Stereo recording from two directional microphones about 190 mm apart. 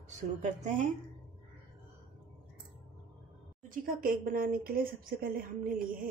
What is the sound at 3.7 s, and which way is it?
A woman's voice, 45° right (ahead or behind).